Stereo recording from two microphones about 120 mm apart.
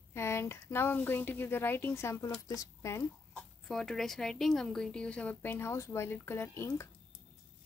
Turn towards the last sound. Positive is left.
turn(degrees=20)  # may be behind; listen again after turning